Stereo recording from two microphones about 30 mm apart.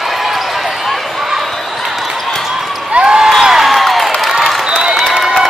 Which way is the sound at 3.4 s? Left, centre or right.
Centre.